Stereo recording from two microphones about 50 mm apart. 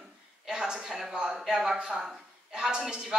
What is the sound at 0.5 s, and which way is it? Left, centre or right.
A woman's voice, centre.